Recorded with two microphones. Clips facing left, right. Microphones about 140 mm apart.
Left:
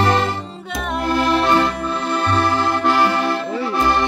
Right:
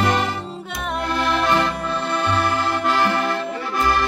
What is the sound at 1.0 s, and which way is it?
Music, 35° left (ahead or behind).